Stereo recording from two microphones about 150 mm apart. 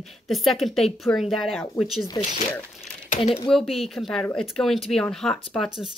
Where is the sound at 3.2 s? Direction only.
40° left (ahead or behind).